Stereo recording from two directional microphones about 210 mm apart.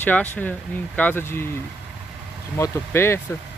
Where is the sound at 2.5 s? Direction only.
10° left (ahead or behind).